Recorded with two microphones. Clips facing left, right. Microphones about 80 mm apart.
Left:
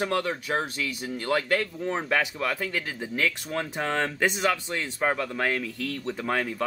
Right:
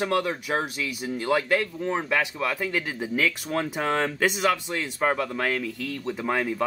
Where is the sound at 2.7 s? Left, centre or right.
Centre.